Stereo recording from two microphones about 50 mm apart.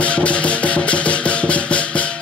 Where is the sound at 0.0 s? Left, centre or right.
Left.